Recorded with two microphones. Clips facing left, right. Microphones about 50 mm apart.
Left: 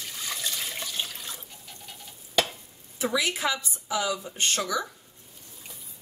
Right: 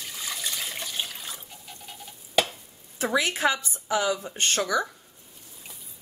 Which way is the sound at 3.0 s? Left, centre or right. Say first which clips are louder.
Right 3 dB; right.